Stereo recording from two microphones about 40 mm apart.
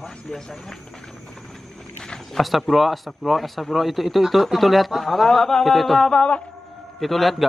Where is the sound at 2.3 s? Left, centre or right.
Centre.